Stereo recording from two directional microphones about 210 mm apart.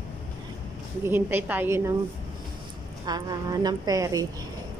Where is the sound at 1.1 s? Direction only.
10° right (ahead or behind).